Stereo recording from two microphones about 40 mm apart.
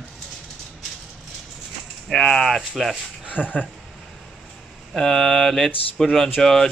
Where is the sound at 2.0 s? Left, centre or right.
Centre.